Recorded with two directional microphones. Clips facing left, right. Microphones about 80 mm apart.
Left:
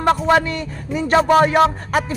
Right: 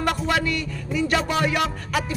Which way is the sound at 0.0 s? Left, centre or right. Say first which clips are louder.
Left 7 dB; left.